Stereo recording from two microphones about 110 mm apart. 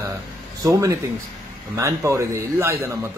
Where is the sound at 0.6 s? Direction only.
30° right (ahead or behind).